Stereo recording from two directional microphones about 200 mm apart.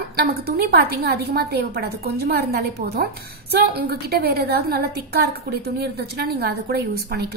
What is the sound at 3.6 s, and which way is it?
A woman's voice, 50° right (ahead or behind).